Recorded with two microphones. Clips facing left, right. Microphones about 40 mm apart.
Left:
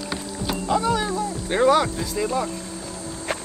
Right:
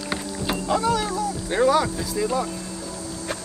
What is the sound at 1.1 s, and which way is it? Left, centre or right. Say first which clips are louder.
Speech: left 1 dB; left.